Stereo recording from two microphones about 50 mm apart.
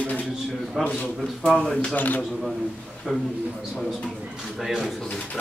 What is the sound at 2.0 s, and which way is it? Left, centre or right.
Speech, left.